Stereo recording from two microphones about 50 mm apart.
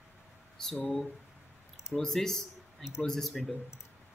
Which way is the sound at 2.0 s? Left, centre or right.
Centre.